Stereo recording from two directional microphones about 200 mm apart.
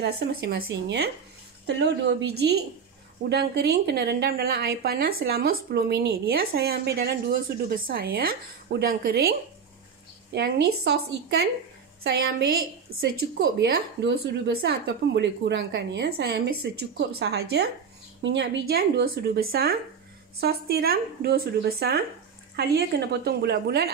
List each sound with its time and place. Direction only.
0.0 s a woman's voice: 55° right (ahead or behind)
10.3 s a woman's voice: 55° right (ahead or behind)